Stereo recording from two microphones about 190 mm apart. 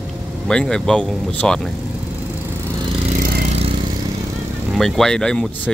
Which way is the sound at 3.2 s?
50° right (ahead or behind).